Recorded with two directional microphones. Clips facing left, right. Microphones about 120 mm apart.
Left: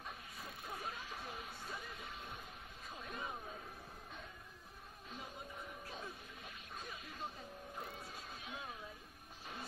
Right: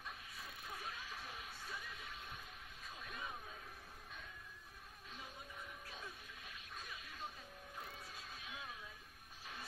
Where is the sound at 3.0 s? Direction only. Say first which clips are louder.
Left 4 dB; 35° left (ahead or behind).